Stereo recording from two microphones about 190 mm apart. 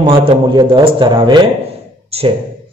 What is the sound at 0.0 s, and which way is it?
A man's voice, 25° right (ahead or behind).